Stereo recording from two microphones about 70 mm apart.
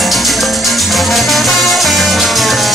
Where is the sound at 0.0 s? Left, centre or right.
Centre.